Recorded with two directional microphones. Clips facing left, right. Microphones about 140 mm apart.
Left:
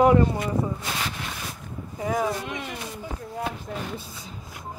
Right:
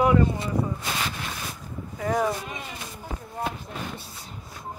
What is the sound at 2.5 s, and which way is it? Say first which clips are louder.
Speech: left 4 dB; 75° left (ahead or behind).